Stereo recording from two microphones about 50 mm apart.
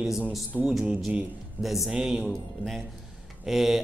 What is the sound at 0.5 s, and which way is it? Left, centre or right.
Speech, right.